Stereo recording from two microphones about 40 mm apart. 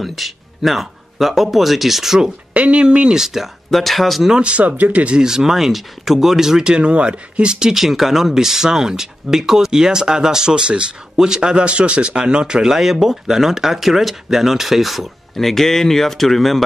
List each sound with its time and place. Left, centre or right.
0.0 s speech: centre
2.5 s speech: right
3.7 s speech: centre
4.3 s speech: right
4.6 s speech: right
5.2 s speech: centre
7.7 s speech: centre